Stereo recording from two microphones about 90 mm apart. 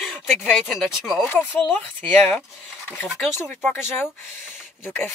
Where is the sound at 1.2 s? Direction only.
20° left (ahead or behind).